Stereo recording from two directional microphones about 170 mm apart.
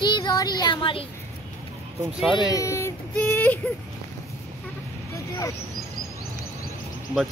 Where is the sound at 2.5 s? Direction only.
20° left (ahead or behind).